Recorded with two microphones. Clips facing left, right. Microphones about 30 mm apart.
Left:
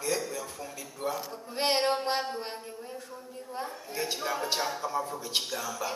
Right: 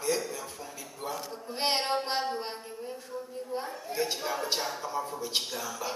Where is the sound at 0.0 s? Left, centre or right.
Centre.